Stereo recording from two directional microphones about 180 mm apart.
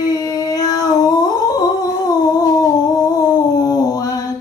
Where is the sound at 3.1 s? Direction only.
20° left (ahead or behind).